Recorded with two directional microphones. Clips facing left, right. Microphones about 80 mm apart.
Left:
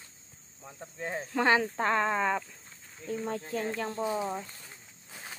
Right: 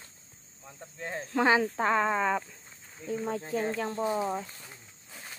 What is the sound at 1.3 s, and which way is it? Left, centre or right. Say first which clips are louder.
Speech: right 1 dB; centre.